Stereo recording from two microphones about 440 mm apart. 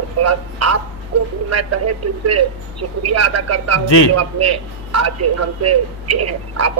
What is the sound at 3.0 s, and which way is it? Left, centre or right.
A man's voice, right.